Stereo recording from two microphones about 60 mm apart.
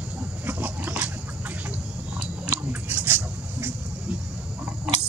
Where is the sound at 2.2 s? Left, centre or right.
Right.